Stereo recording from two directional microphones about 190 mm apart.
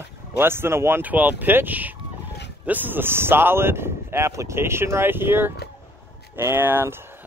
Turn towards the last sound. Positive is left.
turn(degrees=-10)  # may be behind; listen again after turning